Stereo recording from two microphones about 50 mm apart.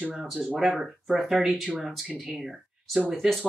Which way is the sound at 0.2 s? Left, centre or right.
Centre.